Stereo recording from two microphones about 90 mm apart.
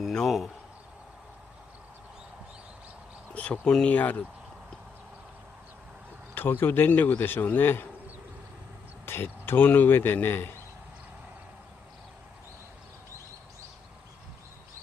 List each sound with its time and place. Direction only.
0.0 s speech: centre (ahead or behind)
3.3 s speech: 15° left (ahead or behind)
6.3 s speech: 25° left (ahead or behind)
9.0 s speech: 25° left (ahead or behind)